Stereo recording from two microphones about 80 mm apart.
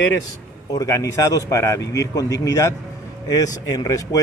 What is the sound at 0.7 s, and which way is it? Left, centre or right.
Speech, left.